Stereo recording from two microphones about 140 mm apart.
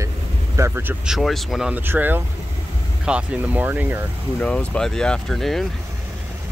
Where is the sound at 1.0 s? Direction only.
Centre (ahead or behind).